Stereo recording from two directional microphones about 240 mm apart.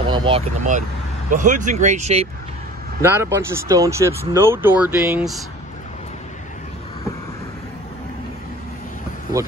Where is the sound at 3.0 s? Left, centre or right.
Centre.